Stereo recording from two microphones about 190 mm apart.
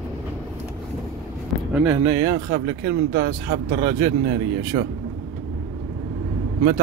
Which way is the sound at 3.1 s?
55° right (ahead or behind).